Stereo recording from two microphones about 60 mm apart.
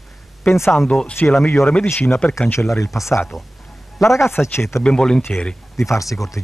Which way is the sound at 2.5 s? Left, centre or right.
Left.